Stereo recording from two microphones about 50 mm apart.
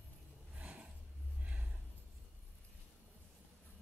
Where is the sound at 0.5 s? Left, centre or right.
Right.